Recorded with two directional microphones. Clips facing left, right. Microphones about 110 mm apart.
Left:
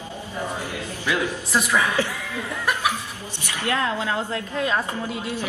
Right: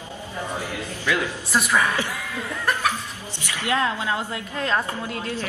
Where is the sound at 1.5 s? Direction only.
Centre (ahead or behind).